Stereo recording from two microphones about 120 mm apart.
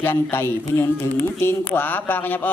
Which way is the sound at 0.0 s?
20° left (ahead or behind).